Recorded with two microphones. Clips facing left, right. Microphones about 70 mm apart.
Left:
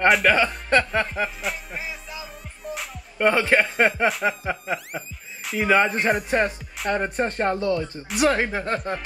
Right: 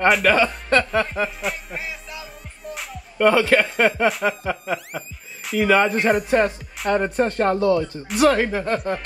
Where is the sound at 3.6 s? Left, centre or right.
Centre.